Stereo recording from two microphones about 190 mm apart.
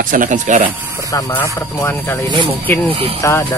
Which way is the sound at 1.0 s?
15° left (ahead or behind).